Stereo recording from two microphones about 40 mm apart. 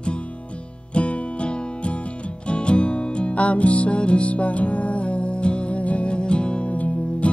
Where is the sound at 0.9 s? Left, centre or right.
Left.